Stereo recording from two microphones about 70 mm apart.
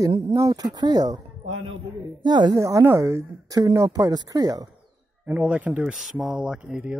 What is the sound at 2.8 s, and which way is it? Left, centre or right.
Speech, right.